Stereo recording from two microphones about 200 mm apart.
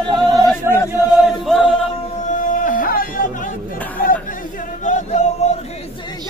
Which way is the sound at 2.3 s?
40° left (ahead or behind).